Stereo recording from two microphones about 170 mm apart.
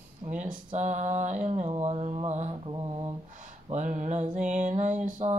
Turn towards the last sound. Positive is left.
turn(degrees=-35)  # may be behind; listen again after turning